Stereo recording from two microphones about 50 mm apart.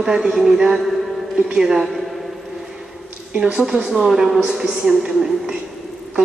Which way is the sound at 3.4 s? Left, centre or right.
Centre.